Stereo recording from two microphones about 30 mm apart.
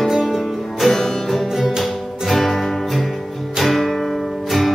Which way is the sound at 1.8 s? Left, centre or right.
Centre.